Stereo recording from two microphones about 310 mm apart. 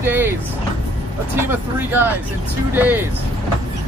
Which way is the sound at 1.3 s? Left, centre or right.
Centre.